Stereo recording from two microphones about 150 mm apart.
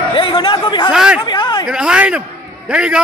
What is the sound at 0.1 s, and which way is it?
Speech, 30° left (ahead or behind).